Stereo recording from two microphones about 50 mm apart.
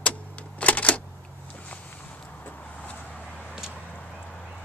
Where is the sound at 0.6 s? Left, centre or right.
Left.